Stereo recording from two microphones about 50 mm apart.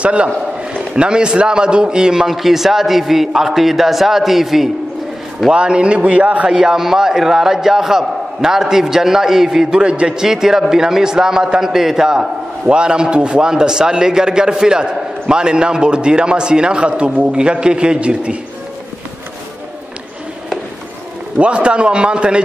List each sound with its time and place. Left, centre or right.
0.0 s a man's voice: right; by 4.6 s centre
5.5 s a man's voice: centre
6.5 s a man's voice: centre
21.4 s a man's voice: right